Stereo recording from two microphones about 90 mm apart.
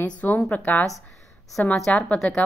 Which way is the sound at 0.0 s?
20° left (ahead or behind).